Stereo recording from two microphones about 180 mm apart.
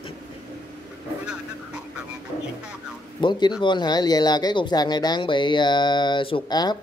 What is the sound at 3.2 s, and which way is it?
Speech, 25° left (ahead or behind).